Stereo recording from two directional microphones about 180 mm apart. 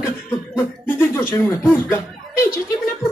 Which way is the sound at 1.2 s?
10° left (ahead or behind).